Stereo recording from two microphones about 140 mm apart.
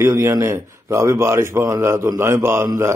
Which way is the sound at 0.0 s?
20° right (ahead or behind).